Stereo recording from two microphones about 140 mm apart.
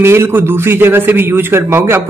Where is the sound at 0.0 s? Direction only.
20° right (ahead or behind).